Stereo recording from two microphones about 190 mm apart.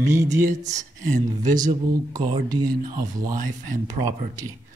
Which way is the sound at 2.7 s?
45° right (ahead or behind).